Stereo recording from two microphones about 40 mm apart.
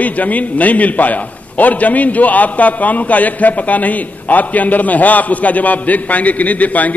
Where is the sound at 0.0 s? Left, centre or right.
Left.